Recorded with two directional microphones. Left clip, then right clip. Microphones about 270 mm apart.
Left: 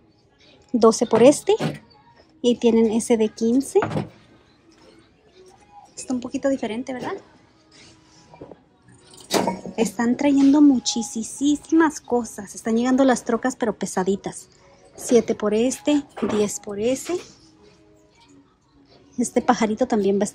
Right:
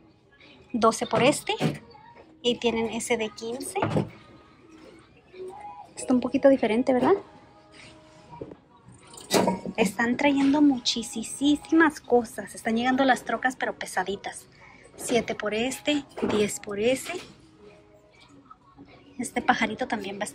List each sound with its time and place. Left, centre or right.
0.7 s a woman's voice: left
3.8 s speech: centre
6.0 s a woman's voice: centre
9.3 s a sound: centre
9.7 s a woman's voice: centre
19.4 s a woman's voice: left